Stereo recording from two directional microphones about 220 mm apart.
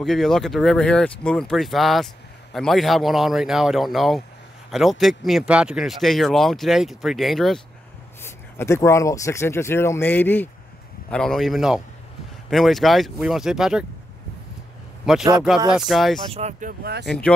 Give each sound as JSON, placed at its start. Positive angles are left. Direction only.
{"t": 0.0, "sound": "speech", "side_deg": 0}
{"t": 8.2, "sound": "speech", "side_deg": 10}
{"t": 15.1, "sound": "speech", "side_deg": 0}
{"t": 16.3, "sound": "speech", "side_deg": -30}
{"t": 17.0, "sound": "speech", "side_deg": 5}